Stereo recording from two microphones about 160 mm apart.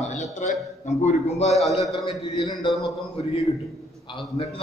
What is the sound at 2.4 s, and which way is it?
Speech, 30° left (ahead or behind).